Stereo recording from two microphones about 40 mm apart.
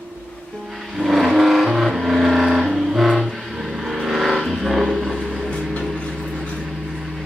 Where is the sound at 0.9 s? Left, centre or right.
Centre.